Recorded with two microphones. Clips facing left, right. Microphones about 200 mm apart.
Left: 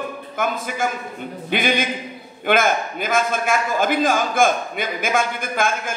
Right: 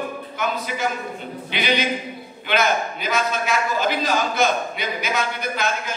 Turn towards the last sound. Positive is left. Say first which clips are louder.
# left 2 dB
turn(degrees=50)  # may be behind; listen again after turning